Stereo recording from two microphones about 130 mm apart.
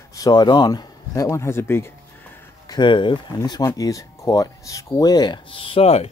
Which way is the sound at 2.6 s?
35° left (ahead or behind).